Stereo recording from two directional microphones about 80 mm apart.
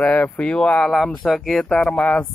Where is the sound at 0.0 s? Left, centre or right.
Centre.